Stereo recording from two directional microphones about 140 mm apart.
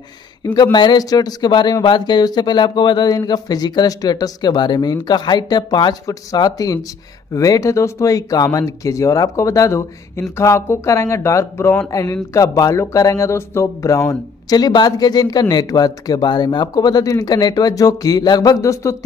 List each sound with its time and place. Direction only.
0.6 s speech: 30° left (ahead or behind)